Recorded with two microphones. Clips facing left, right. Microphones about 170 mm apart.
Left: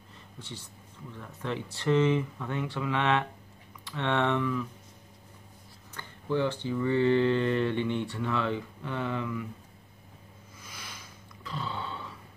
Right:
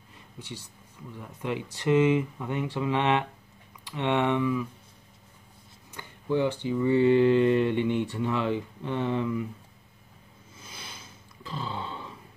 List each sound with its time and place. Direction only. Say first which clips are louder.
0.4 s speech: right 3 dB; 15° right (ahead or behind)
5.9 s speech: right 2 dB; 15° right (ahead or behind)
10.6 s a sound: right 2 dB; 30° right (ahead or behind)